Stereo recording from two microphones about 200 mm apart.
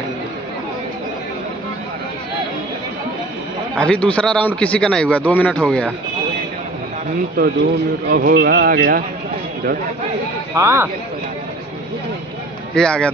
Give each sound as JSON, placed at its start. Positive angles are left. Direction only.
{"t": 3.7, "sound": "a man's voice", "side_deg": 5}
{"t": 7.4, "sound": "speech", "side_deg": -45}
{"t": 10.5, "sound": "speech", "side_deg": -15}
{"t": 12.7, "sound": "a man's voice", "side_deg": 5}